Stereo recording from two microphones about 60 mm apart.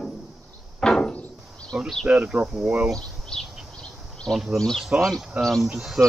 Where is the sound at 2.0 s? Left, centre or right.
Centre.